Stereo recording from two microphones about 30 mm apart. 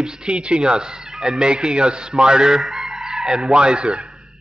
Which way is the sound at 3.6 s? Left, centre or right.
Right.